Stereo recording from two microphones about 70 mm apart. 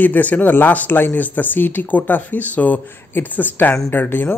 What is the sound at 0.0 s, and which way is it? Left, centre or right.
Speech, left.